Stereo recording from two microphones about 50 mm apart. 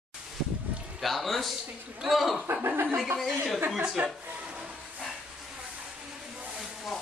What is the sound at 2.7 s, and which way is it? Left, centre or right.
Speech, right.